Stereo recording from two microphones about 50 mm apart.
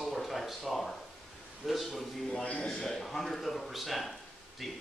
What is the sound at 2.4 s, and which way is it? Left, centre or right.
Speech, left.